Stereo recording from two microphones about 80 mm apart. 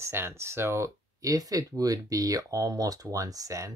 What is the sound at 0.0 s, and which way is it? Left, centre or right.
Speech, right.